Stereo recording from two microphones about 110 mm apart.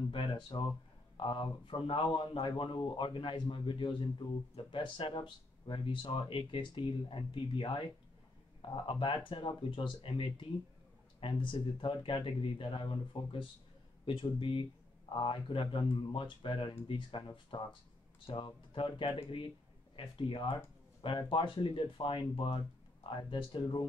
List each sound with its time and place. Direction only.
0.1 s speech: 50° left (ahead or behind)